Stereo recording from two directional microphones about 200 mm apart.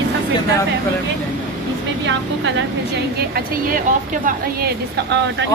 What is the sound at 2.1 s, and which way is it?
A woman's voice, 65° right (ahead or behind).